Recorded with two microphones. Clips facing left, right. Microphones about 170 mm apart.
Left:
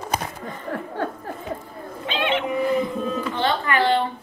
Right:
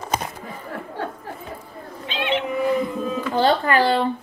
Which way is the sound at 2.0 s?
55° left (ahead or behind).